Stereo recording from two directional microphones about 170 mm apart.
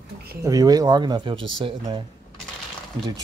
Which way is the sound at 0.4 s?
20° right (ahead or behind).